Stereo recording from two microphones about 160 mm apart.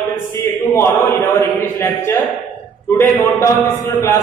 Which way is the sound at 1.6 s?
15° left (ahead or behind).